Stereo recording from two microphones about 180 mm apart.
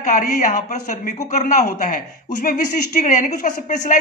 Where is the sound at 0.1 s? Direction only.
45° left (ahead or behind).